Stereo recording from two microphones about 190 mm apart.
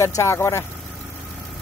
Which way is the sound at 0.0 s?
15° left (ahead or behind).